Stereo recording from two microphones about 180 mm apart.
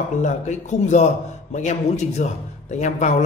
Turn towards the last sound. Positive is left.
turn(degrees=40)  # may be behind; listen again after turning